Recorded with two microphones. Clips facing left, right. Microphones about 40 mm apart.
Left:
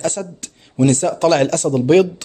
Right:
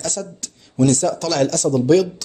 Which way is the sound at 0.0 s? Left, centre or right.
Left.